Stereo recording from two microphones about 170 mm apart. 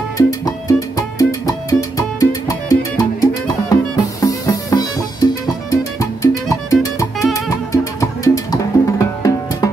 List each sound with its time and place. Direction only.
0.3 s music: 20° left (ahead or behind)